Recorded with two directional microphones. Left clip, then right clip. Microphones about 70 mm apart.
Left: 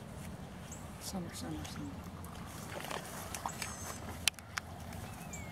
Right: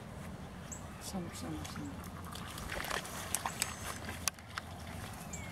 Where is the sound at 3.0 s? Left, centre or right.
Right.